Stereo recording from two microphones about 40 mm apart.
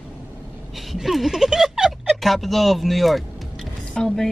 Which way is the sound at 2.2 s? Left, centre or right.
Centre.